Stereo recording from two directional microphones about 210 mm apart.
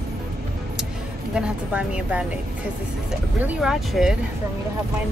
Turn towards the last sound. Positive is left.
turn(degrees=0)  # may be behind; listen again after turning